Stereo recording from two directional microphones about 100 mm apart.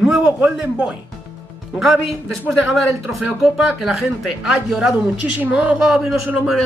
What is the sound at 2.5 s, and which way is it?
Speech, centre (ahead or behind).